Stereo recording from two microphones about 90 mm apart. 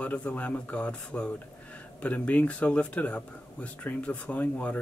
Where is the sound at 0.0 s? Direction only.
15° left (ahead or behind).